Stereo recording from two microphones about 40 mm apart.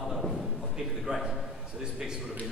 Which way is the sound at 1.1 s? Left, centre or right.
Right.